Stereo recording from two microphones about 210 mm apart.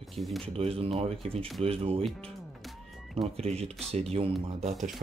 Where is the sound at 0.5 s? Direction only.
25° right (ahead or behind).